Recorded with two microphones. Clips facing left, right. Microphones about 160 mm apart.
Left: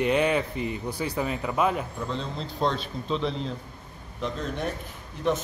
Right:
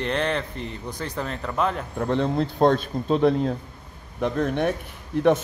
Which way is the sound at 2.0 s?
60° right (ahead or behind).